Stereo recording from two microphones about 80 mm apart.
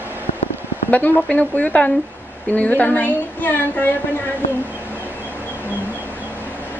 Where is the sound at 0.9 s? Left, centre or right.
Centre.